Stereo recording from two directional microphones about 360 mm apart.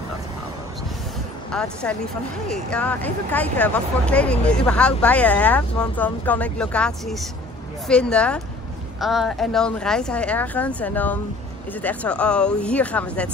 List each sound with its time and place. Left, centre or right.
1.5 s speech: centre